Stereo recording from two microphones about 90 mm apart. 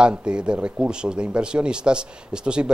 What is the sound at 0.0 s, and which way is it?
Speech, 10° right (ahead or behind).